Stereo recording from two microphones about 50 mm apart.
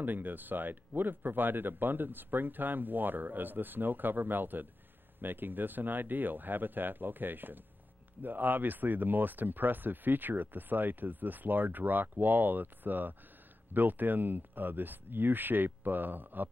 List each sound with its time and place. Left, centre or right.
0.0 s speech: right